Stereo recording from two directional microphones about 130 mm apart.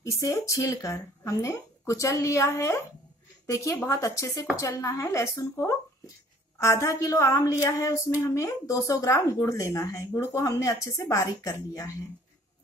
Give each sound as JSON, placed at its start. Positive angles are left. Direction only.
{"t": 0.0, "sound": "a woman's voice", "side_deg": 25}